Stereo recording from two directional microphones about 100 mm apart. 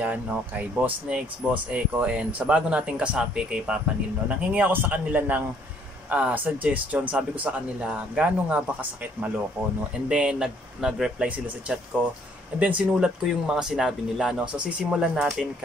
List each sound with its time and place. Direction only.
0.0 s speech: 15° right (ahead or behind)
10.0 s speech: 10° right (ahead or behind)